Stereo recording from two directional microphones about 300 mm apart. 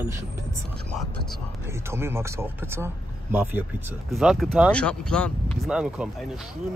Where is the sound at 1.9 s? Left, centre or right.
Centre.